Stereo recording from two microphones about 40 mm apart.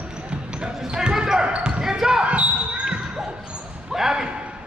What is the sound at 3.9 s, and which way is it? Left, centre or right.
Basketball bounce, centre.